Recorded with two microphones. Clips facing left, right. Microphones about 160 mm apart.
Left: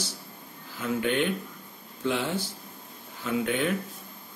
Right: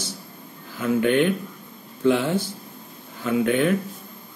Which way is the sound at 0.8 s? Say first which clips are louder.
Right 7 dB; 55° right (ahead or behind).